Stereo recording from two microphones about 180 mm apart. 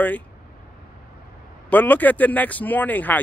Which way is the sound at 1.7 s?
10° left (ahead or behind).